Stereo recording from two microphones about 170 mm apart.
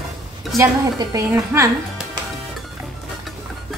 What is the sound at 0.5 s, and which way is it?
Speech, 20° right (ahead or behind).